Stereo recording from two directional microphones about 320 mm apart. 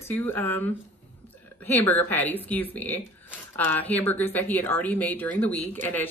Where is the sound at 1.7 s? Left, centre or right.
Centre.